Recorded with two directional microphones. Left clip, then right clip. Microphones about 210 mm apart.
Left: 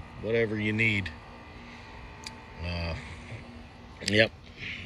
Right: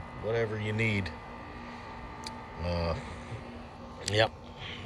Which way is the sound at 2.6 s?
45° right (ahead or behind).